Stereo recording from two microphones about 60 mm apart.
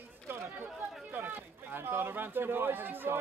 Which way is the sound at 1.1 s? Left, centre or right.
Right.